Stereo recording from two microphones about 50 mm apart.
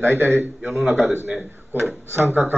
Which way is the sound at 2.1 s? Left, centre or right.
Right.